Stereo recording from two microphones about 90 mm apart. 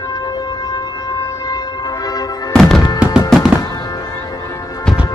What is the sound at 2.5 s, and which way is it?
Music, 5° left (ahead or behind).